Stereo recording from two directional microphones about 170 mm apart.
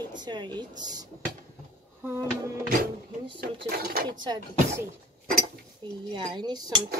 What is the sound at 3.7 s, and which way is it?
Speech, 60° right (ahead or behind).